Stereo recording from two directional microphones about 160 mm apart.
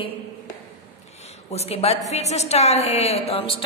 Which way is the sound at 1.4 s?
40° left (ahead or behind).